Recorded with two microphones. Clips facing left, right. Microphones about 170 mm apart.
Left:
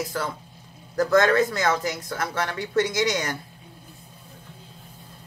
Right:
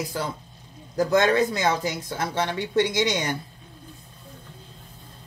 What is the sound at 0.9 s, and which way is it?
Speech, 15° right (ahead or behind).